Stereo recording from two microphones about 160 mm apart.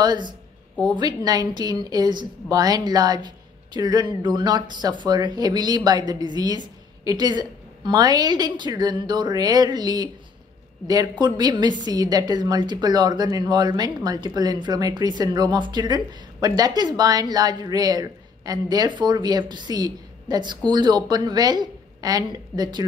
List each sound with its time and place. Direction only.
0.0 s a woman's voice: 30° right (ahead or behind)